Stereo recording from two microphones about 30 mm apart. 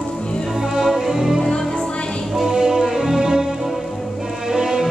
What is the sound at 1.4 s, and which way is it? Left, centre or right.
Music, left.